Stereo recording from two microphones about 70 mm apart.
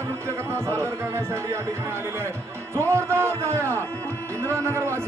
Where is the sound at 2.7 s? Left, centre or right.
Right.